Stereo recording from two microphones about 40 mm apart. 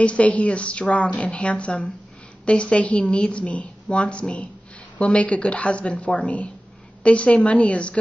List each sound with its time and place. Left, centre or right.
0.0 s a woman's voice: left